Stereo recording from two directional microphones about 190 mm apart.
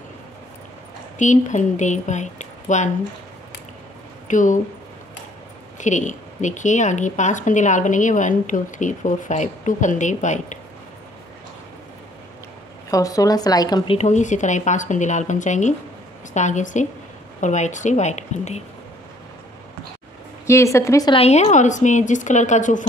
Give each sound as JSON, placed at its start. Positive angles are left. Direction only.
{"t": 1.1, "sound": "speech", "side_deg": 40}
{"t": 4.3, "sound": "speech", "side_deg": 40}
{"t": 5.8, "sound": "a woman's voice", "side_deg": 40}
{"t": 12.9, "sound": "speech", "side_deg": 20}
{"t": 13.9, "sound": "a woman's voice", "side_deg": 40}
{"t": 20.4, "sound": "a woman's voice", "side_deg": 15}
{"t": 21.2, "sound": "a woman's voice", "side_deg": 35}